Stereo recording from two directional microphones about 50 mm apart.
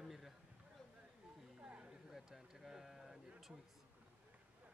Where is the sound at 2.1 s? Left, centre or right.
Centre.